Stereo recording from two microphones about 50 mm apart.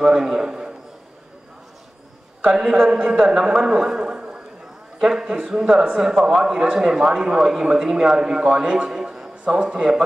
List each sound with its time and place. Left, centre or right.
0.0 s a man's voice: centre
2.4 s speech: centre
9.4 s speech: centre